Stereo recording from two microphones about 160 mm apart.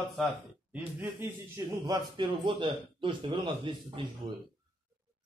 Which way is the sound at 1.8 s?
30° right (ahead or behind).